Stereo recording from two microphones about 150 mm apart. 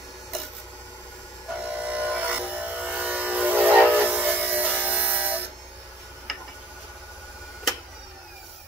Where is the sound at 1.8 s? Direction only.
10° right (ahead or behind).